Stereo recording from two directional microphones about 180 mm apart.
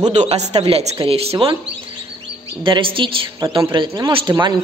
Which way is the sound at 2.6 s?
30° right (ahead or behind).